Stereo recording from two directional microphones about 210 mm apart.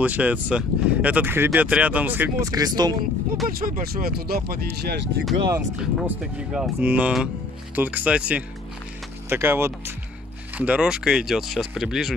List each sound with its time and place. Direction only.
0.0 s speech: 10° right (ahead or behind)
3.4 s speech: 45° right (ahead or behind)
5.8 s speech: 5° right (ahead or behind)